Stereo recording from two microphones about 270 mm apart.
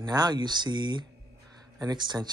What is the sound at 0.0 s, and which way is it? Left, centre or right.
Speech, centre.